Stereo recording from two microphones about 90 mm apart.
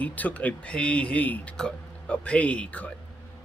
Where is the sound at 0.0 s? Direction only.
15° left (ahead or behind).